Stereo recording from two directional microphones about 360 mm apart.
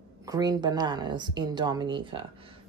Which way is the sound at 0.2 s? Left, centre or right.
Centre.